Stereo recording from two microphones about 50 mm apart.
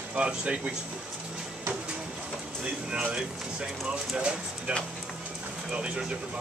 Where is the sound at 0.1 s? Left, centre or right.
Right.